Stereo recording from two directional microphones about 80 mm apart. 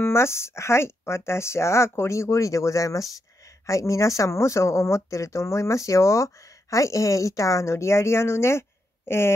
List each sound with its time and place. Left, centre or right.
0.0 s speech: left